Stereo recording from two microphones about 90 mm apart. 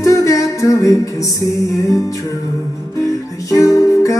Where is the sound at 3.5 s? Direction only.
35° left (ahead or behind).